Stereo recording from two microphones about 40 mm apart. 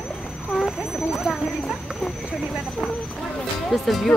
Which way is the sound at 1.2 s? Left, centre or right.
Centre.